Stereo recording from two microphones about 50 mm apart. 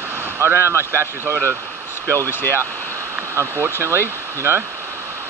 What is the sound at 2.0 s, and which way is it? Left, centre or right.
Speech, right.